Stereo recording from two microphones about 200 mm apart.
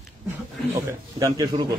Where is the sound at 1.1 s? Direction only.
20° right (ahead or behind).